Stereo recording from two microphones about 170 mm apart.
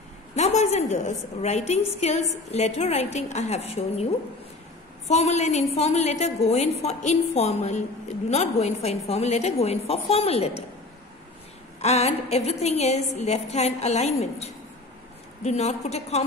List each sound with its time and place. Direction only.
0.4 s a woman's voice: 40° left (ahead or behind)
11.8 s a woman's voice: 40° left (ahead or behind)